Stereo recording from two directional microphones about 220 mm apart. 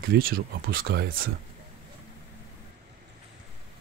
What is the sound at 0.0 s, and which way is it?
Speech, 40° right (ahead or behind).